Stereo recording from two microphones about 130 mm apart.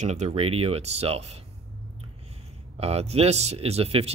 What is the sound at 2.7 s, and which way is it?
Speech, 55° right (ahead or behind).